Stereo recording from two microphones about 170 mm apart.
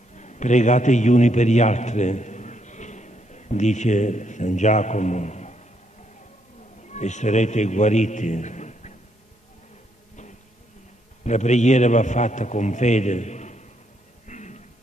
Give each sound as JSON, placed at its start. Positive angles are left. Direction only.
{"t": 0.1, "sound": "a man's voice", "side_deg": 45}
{"t": 6.8, "sound": "a man's voice", "side_deg": 45}
{"t": 11.2, "sound": "a man's voice", "side_deg": 45}
{"t": 14.2, "sound": "a sound", "side_deg": 45}